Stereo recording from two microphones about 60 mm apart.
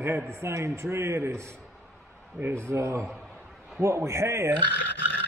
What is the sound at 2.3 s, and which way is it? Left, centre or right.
Speech, right.